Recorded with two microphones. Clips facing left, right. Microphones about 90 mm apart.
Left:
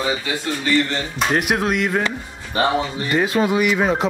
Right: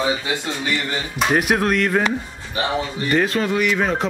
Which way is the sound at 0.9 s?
5° right (ahead or behind).